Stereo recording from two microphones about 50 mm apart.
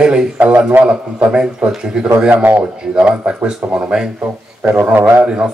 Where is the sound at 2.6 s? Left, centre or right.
Centre.